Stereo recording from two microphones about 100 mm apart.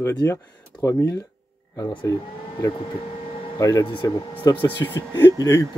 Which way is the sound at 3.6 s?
35° left (ahead or behind).